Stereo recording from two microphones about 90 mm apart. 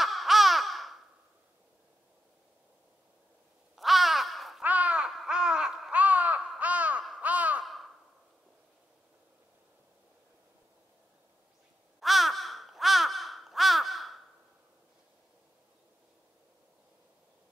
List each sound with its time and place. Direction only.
0.0 s baby laughter: centre (ahead or behind)
3.7 s crow: centre (ahead or behind)
4.6 s babbling: 15° right (ahead or behind)
5.1 s a sound: 10° right (ahead or behind)
6.6 s crow: 15° right (ahead or behind)
7.6 s crow: centre (ahead or behind)
12.0 s crow: centre (ahead or behind)